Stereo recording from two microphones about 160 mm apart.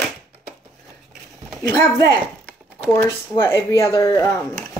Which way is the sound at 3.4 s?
15° left (ahead or behind).